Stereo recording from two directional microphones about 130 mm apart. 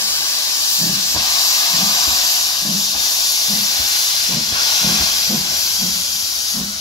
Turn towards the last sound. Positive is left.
turn(degrees=30)  # may be behind; listen again after turning